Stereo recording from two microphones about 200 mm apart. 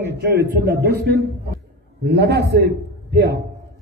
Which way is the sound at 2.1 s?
55° right (ahead or behind).